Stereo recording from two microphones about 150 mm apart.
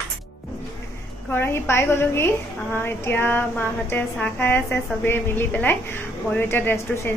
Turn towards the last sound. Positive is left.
turn(degrees=15)  # may be behind; listen again after turning